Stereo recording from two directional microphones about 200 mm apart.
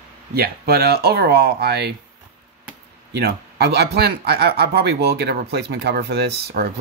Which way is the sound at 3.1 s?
55° right (ahead or behind).